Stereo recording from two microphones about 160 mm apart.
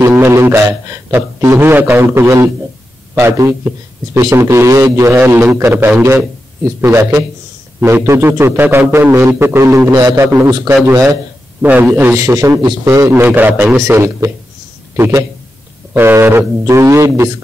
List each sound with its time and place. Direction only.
0.0 s a man's voice: 15° right (ahead or behind)